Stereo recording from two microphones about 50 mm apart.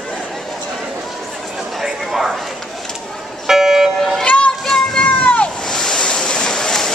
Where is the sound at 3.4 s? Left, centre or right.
Centre.